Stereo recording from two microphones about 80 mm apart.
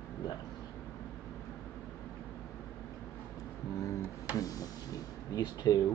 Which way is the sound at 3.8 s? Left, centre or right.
Left.